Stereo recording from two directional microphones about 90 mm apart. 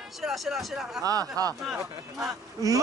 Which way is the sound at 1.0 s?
40° right (ahead or behind).